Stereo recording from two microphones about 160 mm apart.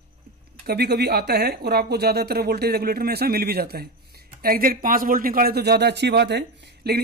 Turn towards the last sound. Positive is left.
turn(degrees=-90)